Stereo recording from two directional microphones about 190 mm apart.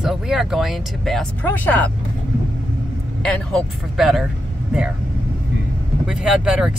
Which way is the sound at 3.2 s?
5° left (ahead or behind).